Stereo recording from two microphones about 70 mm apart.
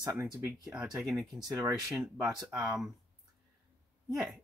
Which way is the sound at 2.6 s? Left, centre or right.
Centre.